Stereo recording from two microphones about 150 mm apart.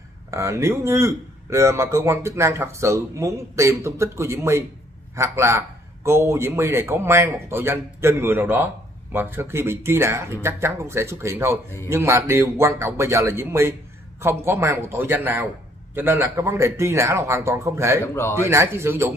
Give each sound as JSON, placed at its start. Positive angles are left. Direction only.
{"t": 0.3, "sound": "a man's voice", "side_deg": -20}
{"t": 18.0, "sound": "a man's voice", "side_deg": 15}
{"t": 18.3, "sound": "speech", "side_deg": -15}